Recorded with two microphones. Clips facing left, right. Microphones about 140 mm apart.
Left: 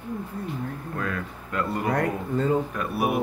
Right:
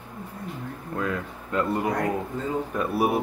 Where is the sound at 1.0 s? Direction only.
20° right (ahead or behind).